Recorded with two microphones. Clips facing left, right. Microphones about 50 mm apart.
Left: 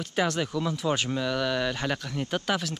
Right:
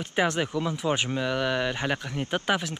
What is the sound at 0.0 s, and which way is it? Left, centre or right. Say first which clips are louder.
Speech: right 2 dB; right.